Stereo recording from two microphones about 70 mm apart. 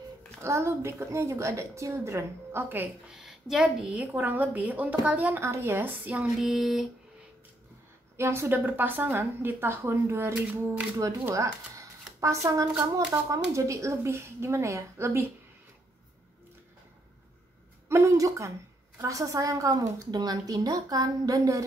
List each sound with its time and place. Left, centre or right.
0.4 s a woman's voice: right
3.1 s a woman's voice: centre
3.9 s speech: right
5.4 s speech: right
6.1 s female singing: centre
8.2 s speech: right
8.6 s a woman's voice: right
17.8 s a woman's voice: right